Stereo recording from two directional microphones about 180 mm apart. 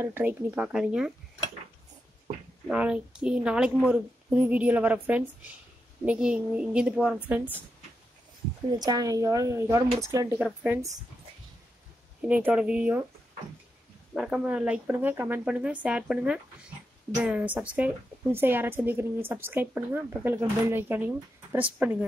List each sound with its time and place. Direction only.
0.0 s a woman's voice: 15° right (ahead or behind)
2.7 s a woman's voice: 5° right (ahead or behind)
8.7 s speech: 20° right (ahead or behind)
10.4 s a woman's voice: 5° right (ahead or behind)
12.2 s a woman's voice: 10° right (ahead or behind)
14.1 s a woman's voice: 5° right (ahead or behind)